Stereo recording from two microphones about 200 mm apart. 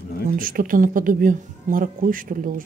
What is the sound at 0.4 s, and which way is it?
Speech, 45° right (ahead or behind).